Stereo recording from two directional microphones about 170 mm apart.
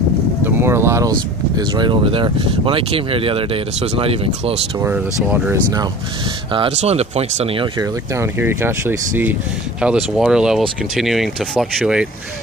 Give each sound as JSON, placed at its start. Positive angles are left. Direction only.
{"t": 0.4, "sound": "vehicle", "side_deg": -15}
{"t": 1.6, "sound": "speech", "side_deg": -25}
{"t": 4.9, "sound": "speech", "side_deg": -5}
{"t": 6.5, "sound": "speech", "side_deg": -35}